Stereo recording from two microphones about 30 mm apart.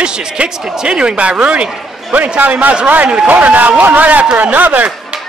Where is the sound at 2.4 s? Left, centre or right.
Right.